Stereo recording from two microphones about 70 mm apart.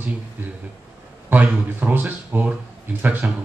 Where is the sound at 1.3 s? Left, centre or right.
Right.